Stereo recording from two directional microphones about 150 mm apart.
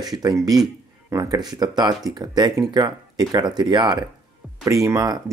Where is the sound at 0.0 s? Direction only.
25° right (ahead or behind).